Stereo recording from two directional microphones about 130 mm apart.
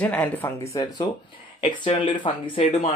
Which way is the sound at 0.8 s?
35° left (ahead or behind).